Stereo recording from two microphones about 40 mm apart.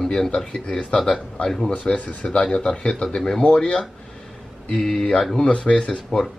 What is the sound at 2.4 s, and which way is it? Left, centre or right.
Speech, centre.